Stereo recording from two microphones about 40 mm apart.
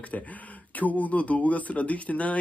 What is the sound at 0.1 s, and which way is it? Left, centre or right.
A man's voice, left.